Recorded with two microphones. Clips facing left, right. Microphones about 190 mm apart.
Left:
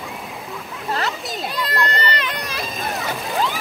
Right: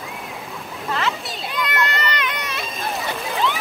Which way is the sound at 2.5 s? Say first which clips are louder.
Left 1 dB; centre (ahead or behind).